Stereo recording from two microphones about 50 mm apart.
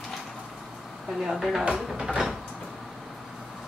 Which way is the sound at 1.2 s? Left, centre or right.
Centre.